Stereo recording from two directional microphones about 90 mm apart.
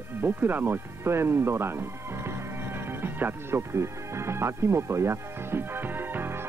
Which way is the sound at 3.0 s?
25° right (ahead or behind).